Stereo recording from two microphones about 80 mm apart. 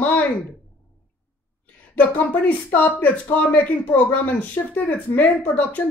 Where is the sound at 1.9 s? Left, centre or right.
Left.